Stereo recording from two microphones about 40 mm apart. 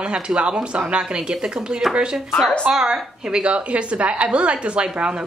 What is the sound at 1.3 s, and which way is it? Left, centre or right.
A woman's voice, centre.